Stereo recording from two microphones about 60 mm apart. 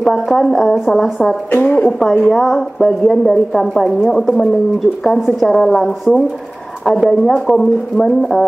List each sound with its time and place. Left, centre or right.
0.1 s speech: centre
1.5 s a woman's voice: left
2.3 s speech: centre
6.8 s speech: centre
7.1 s speech: centre